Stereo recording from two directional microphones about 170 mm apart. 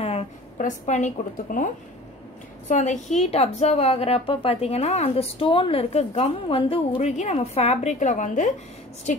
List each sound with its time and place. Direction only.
0.0 s a woman's voice: 35° left (ahead or behind)
2.7 s a woman's voice: 45° left (ahead or behind)